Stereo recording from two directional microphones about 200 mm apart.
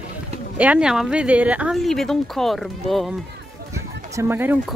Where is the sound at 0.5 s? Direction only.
5° right (ahead or behind).